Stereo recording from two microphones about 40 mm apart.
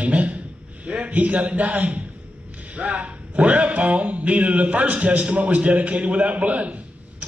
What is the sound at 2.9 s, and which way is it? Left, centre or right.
A man's voice, right.